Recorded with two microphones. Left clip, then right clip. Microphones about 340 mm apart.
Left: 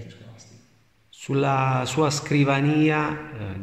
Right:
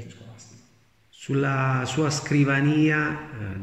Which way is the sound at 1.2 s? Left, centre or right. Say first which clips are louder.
Left 3 dB; centre.